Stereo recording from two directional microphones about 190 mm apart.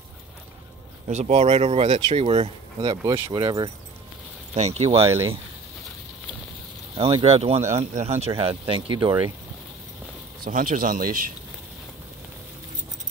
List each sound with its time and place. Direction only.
1.0 s speech: 35° right (ahead or behind)
4.6 s speech: 35° right (ahead or behind)
7.0 s speech: 30° right (ahead or behind)
10.4 s speech: 45° right (ahead or behind)